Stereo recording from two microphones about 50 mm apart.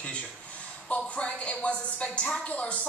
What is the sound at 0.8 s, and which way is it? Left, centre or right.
A woman's voice, left.